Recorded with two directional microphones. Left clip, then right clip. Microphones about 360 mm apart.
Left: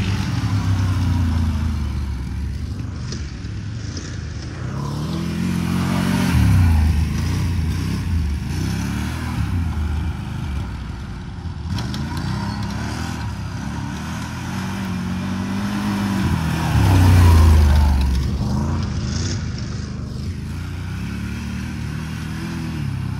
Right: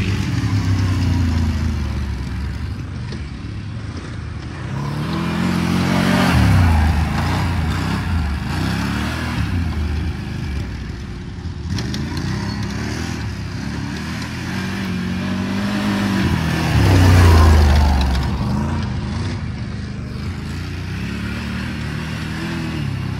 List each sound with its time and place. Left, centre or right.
0.0 s vehicle: centre
4.8 s vehicle: right
5.1 s vehicle: centre
11.7 s vehicle: centre
18.4 s vehicle: right
21.0 s vehicle: centre